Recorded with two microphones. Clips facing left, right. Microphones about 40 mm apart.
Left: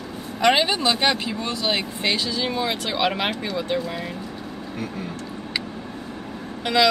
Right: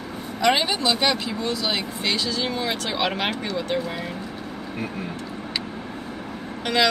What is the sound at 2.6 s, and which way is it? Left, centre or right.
Speech, centre.